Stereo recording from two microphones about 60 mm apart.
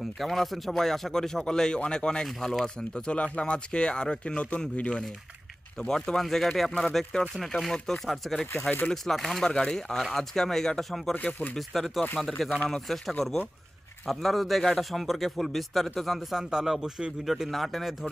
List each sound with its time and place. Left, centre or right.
0.2 s a man's voice: centre
9.4 s a man's voice: centre